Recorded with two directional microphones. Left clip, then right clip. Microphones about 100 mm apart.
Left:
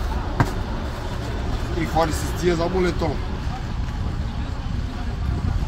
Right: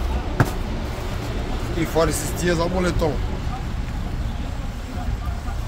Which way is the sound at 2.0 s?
65° right (ahead or behind).